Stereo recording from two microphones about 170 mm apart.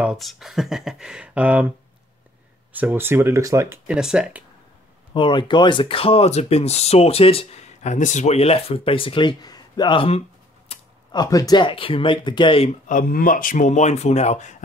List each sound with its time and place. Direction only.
0.0 s speech: centre (ahead or behind)
2.7 s speech: 10° right (ahead or behind)
5.1 s speech: 30° left (ahead or behind)
11.1 s speech: 20° left (ahead or behind)
12.8 s speech: 55° left (ahead or behind)